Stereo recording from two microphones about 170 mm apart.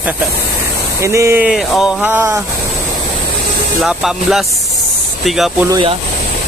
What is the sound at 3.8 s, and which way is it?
Speech, centre (ahead or behind).